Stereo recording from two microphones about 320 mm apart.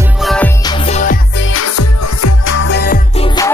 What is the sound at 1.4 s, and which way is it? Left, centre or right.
Music, left.